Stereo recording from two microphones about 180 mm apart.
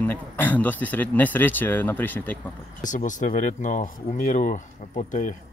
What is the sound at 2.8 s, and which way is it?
Speech, 45° left (ahead or behind).